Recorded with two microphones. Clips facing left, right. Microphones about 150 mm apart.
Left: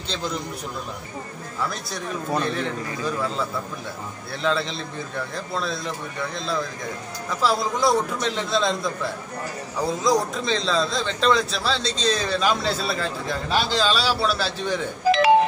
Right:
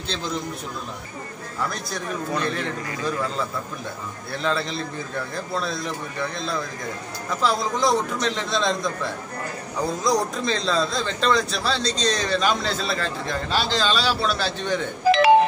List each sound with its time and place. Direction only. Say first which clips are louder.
1.7 s speech: right 1 dB; centre (ahead or behind)
4.3 s speech: left 1 dB; centre (ahead or behind)
15.0 s music: right 1 dB; 65° right (ahead or behind)